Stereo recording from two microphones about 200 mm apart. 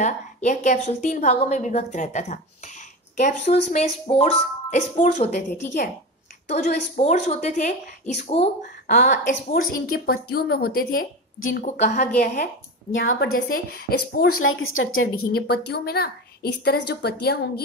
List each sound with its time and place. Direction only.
0.0 s a woman's voice: 35° left (ahead or behind)
6.5 s a woman's voice: 35° left (ahead or behind)
8.8 s a woman's voice: 40° left (ahead or behind)
11.6 s a woman's voice: 35° left (ahead or behind)
14.3 s a woman's voice: 90° left
15.3 s a woman's voice: 50° left (ahead or behind)